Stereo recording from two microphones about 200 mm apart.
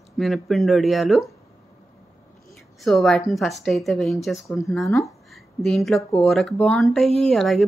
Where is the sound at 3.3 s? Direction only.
Centre (ahead or behind).